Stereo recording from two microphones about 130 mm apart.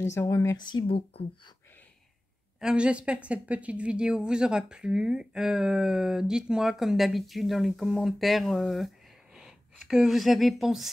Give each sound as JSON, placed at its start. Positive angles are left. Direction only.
{"t": 0.0, "sound": "speech", "side_deg": 20}
{"t": 0.7, "sound": "speech", "side_deg": 40}
{"t": 2.6, "sound": "speech", "side_deg": -10}